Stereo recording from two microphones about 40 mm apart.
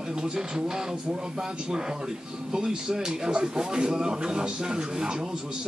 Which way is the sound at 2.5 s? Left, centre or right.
Centre.